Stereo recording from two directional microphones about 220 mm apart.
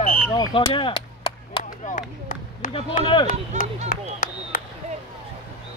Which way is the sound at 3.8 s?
40° left (ahead or behind).